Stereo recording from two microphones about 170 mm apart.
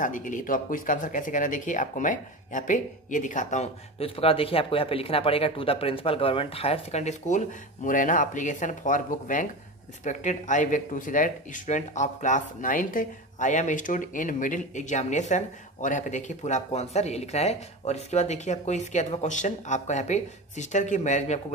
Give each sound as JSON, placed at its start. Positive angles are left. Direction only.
{"t": 0.0, "sound": "speech", "side_deg": 50}